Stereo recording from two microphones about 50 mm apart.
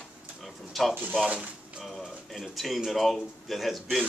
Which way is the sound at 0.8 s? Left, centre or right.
Centre.